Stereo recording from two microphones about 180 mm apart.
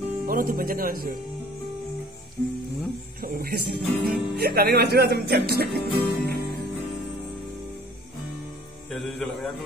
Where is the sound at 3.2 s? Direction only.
55° right (ahead or behind).